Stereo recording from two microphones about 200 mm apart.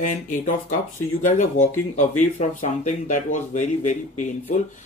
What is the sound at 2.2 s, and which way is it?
Speech, 35° left (ahead or behind).